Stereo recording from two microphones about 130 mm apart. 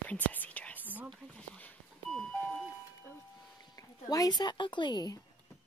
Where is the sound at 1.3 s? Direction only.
10° left (ahead or behind).